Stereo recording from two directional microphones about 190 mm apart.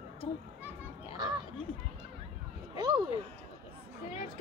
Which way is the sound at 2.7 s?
25° right (ahead or behind).